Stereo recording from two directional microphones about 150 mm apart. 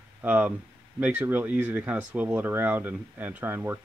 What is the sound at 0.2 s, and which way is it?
Speech, 10° right (ahead or behind).